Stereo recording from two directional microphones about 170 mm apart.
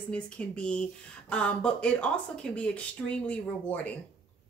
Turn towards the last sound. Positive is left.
turn(degrees=10)  # may be behind; listen again after turning